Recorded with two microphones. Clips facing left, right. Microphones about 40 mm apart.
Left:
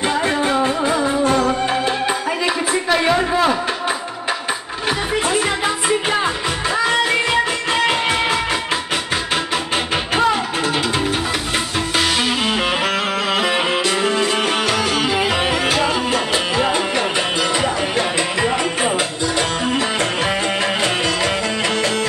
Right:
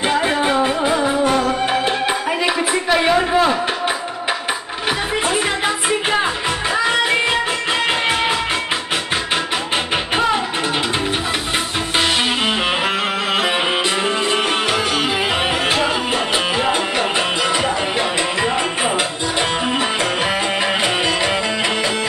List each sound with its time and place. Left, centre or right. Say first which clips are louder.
0.0 s music: right 1 dB; centre
1.3 s music: left 1 dB; centre
1.7 s music: right 1 dB; right
3.1 s a sound: right 2 dB; centre
6.8 s music: even; centre
14.0 s music: even; centre